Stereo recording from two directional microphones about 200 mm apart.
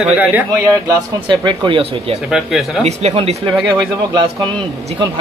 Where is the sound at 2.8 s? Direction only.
35° right (ahead or behind).